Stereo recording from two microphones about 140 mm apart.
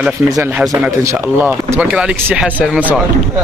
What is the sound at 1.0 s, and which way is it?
Speech, 15° right (ahead or behind).